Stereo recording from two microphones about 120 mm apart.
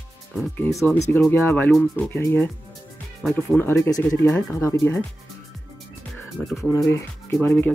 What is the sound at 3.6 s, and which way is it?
Speech, 20° left (ahead or behind).